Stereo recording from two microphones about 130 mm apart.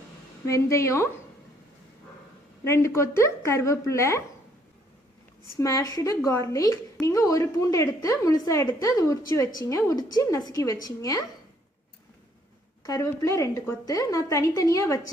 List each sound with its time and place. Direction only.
0.5 s a woman's voice: 25° left (ahead or behind)
2.6 s a woman's voice: 20° left (ahead or behind)
5.6 s a woman's voice: 25° left (ahead or behind)
12.8 s a woman's voice: 25° left (ahead or behind)